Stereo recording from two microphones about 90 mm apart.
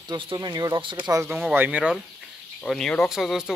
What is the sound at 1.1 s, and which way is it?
Speech, 30° right (ahead or behind).